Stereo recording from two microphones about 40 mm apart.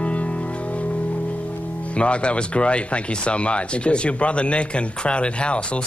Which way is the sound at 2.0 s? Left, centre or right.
Left.